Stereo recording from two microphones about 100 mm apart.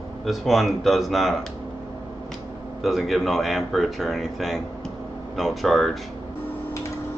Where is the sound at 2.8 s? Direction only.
Centre (ahead or behind).